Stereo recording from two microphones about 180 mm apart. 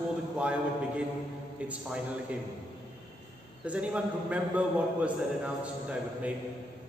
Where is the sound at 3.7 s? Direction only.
5° right (ahead or behind).